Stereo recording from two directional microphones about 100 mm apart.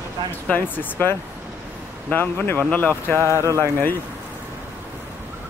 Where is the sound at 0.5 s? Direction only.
20° left (ahead or behind).